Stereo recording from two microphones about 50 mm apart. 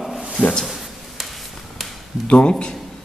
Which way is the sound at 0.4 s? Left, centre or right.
Centre.